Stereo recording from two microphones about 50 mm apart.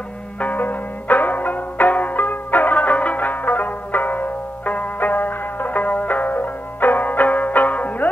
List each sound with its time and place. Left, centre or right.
0.4 s music: left